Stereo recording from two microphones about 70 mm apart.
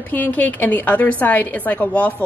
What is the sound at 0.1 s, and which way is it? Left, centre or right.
A woman's voice, left.